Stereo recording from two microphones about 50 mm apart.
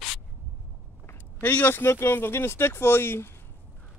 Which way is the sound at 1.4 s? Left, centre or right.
Left.